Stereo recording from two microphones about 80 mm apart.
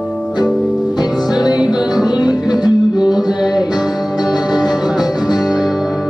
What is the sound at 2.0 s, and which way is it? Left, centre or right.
Music, left.